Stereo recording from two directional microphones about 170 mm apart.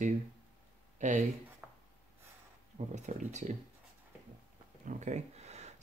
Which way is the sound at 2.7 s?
45° right (ahead or behind).